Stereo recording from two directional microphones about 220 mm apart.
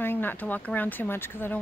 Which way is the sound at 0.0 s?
10° left (ahead or behind).